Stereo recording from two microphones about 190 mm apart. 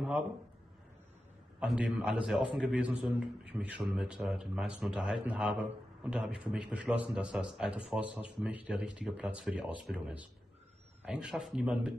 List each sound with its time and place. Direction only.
1.6 s a man's voice: 5° right (ahead or behind)